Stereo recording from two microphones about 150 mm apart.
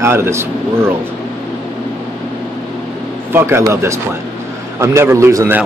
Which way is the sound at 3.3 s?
15° right (ahead or behind).